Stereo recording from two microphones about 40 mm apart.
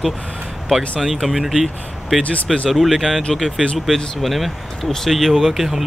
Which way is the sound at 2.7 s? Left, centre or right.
Centre.